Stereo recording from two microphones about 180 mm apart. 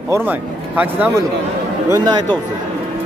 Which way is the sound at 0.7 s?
10° right (ahead or behind).